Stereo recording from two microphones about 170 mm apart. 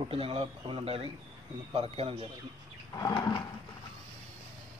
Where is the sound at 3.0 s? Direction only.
25° left (ahead or behind).